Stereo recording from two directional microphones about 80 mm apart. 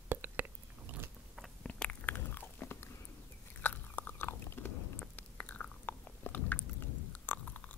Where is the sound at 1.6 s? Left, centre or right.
Centre.